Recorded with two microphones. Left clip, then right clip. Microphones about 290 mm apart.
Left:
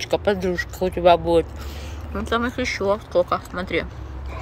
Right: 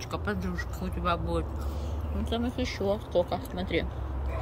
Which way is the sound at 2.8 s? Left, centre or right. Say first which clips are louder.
Left 7 dB; centre.